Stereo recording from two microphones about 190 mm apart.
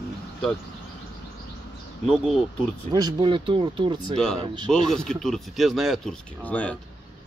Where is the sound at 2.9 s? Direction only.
25° right (ahead or behind).